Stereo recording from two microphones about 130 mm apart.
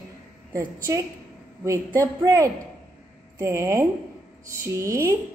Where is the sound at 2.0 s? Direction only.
25° right (ahead or behind).